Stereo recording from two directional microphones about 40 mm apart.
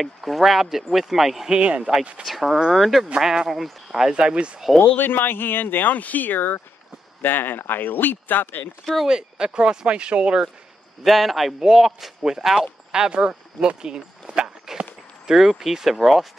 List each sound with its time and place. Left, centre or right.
0.0 s speech: centre
1.5 s speech: right
2.2 s speech: centre
3.2 s speech: centre
4.1 s speech: right
4.8 s a man's voice: left
9.0 s speech: centre
11.1 s speech: centre
11.6 s speech: centre
13.7 s a sound: centre
15.2 s speech: centre